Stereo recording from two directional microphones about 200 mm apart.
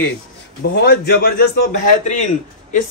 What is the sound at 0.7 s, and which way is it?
Speech, 55° left (ahead or behind).